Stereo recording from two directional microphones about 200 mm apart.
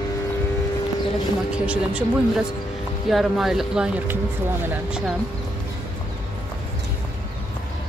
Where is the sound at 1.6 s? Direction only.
5° right (ahead or behind).